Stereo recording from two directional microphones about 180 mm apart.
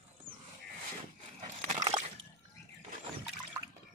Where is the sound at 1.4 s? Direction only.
40° right (ahead or behind).